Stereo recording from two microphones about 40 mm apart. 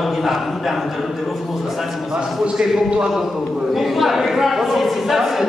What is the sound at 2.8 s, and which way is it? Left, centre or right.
Speech, right.